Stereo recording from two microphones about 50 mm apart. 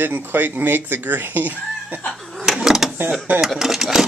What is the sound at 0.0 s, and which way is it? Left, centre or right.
Speech, right.